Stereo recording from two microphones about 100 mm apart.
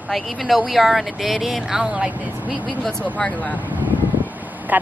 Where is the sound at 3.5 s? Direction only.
15° right (ahead or behind).